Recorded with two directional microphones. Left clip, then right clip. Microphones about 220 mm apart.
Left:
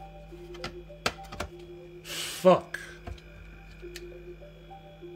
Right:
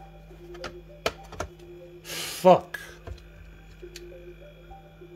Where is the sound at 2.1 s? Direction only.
15° right (ahead or behind).